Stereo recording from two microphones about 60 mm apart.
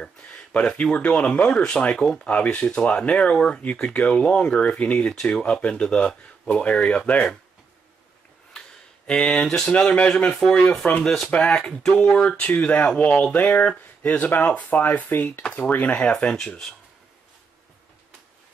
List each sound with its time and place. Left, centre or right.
0.2 s speech: left
2.2 s speech: left
8.5 s a sound: centre
9.7 s speech: left
15.4 s speech: centre
15.7 s speech: left
16.2 s speech: centre